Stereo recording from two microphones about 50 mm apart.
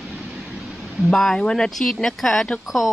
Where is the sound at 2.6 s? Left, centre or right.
Centre.